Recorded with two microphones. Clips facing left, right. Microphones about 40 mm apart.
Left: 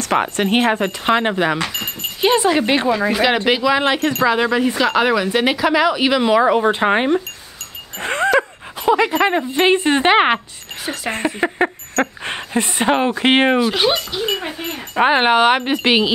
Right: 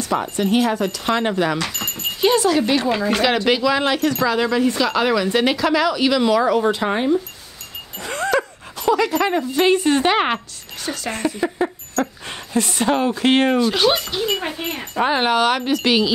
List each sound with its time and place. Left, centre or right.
0.0 s speech: left
3.4 s speech: centre; by 7.1 s left
8.0 s dog: left
8.4 s speech: left
11.5 s a sound: left
12.5 s speech: left
13.6 s speech: centre
14.3 s speech: centre
15.0 s speech: left